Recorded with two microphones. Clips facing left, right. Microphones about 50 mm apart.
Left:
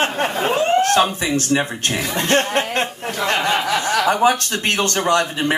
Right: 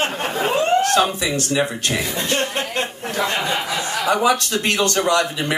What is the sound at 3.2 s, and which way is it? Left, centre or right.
Speech, left.